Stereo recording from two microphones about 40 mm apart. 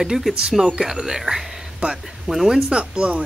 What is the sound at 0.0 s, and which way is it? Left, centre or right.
Speech, centre.